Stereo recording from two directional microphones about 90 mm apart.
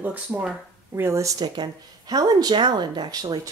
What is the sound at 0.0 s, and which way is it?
Speech, 15° right (ahead or behind).